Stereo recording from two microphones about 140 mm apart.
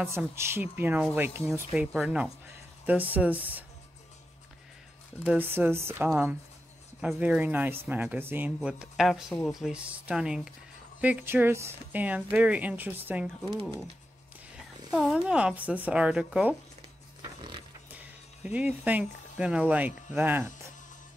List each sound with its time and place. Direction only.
0.0 s speech: 15° right (ahead or behind)
5.2 s speech: 10° right (ahead or behind)
8.5 s speech: 5° right (ahead or behind)
14.9 s speech: 5° right (ahead or behind)
17.2 s a sound: 35° right (ahead or behind)
17.9 s speech: 10° right (ahead or behind)